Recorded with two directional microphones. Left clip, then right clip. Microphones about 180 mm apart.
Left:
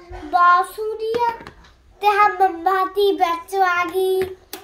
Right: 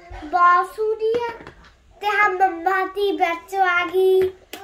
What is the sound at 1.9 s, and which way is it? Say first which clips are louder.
A child's voice: left 3 dB; 25° right (ahead or behind).